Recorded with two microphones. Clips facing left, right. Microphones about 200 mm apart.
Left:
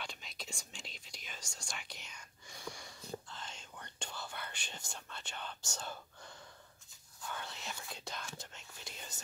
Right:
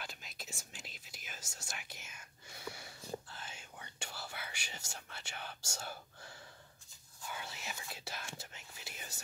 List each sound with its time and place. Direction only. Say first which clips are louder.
0.0 s whispering: left 2 dB; 5° right (ahead or behind)
7.2 s whispering: left 1 dB; 5° right (ahead or behind)